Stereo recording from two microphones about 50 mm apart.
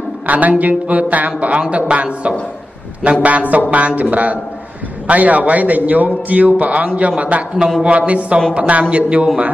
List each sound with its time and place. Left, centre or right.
0.3 s a man's voice: right